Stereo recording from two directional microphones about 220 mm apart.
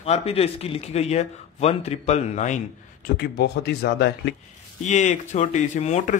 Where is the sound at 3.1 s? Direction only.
45° left (ahead or behind).